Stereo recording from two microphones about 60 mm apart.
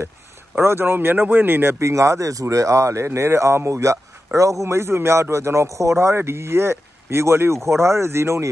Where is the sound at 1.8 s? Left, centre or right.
Right.